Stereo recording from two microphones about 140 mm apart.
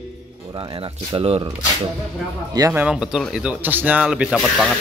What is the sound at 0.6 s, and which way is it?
Speech, 40° right (ahead or behind).